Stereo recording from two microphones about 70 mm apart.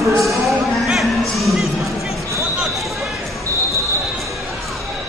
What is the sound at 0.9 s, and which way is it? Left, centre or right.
Music, centre.